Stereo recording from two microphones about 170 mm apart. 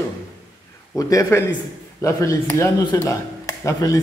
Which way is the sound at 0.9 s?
20° left (ahead or behind).